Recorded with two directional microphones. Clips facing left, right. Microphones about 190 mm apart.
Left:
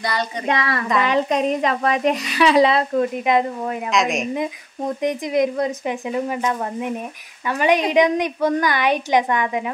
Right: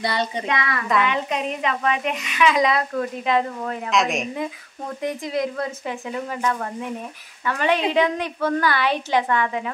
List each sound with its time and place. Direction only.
0.0 s speech: 25° right (ahead or behind)
0.5 s speech: 35° left (ahead or behind); by 3.9 s 15° left (ahead or behind)
3.9 s speech: centre (ahead or behind)
4.4 s speech: 20° left (ahead or behind)